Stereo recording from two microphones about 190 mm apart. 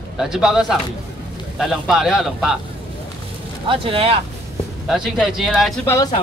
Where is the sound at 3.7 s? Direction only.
30° right (ahead or behind).